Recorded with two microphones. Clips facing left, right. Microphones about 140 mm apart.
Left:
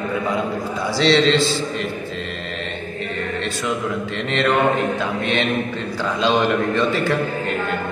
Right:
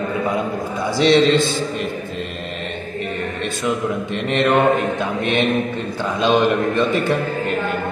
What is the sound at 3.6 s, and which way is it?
Mantra, 20° right (ahead or behind).